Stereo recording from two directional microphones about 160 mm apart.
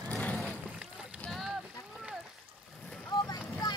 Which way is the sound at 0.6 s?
5° right (ahead or behind).